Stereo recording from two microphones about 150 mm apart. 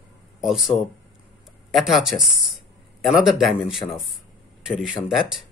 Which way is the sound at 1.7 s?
Centre (ahead or behind).